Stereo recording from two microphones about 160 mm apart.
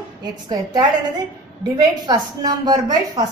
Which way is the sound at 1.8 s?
25° right (ahead or behind).